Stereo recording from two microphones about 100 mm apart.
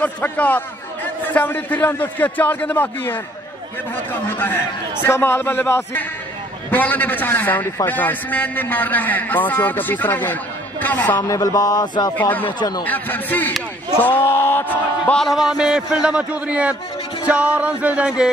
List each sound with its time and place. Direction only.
0.0 s a man's voice: 15° left (ahead or behind)
4.3 s a man's voice: 20° left (ahead or behind)
11.2 s speech: 35° left (ahead or behind)
12.2 s a man's voice: 15° left (ahead or behind)
12.4 s speech: 45° left (ahead or behind)
12.8 s a man's voice: 15° left (ahead or behind)
15.1 s a man's voice: centre (ahead or behind)